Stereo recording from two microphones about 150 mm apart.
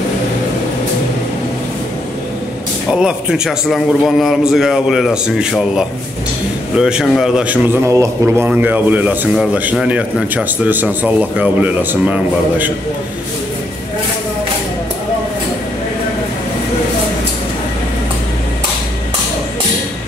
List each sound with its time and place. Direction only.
2.9 s a man's voice: 5° right (ahead or behind)
7.8 s a man's voice: 20° right (ahead or behind)